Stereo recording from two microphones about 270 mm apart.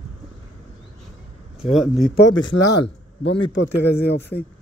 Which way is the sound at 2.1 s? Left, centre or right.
Left.